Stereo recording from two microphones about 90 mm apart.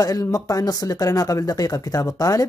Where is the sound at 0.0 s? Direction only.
40° left (ahead or behind).